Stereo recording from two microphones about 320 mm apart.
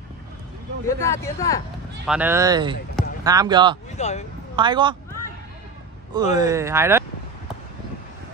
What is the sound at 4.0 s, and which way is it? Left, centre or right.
Speech, left.